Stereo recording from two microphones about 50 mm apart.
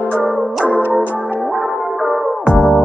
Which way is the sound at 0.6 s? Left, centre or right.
Right.